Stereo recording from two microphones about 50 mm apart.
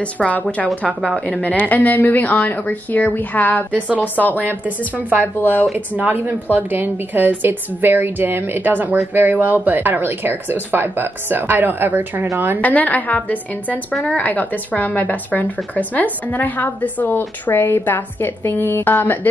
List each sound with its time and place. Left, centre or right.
0.0 s a woman's voice: left
4.5 s speech: right
5.4 s a woman's voice: left
6.0 s speech: right
8.6 s speech: right
12.6 s a woman's voice: left